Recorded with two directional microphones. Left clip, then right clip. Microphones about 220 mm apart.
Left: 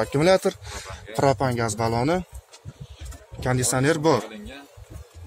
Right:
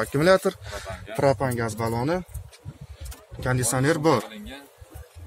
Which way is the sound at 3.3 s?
10° left (ahead or behind).